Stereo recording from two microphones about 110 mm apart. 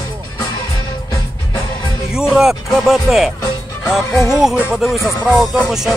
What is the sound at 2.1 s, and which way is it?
Music, 5° right (ahead or behind).